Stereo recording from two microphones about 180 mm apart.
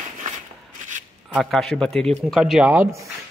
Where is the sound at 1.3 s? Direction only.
Centre (ahead or behind).